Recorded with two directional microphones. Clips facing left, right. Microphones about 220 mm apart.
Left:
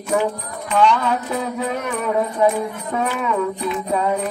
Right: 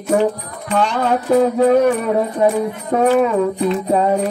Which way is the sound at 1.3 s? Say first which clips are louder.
Right 11 dB; 45° right (ahead or behind).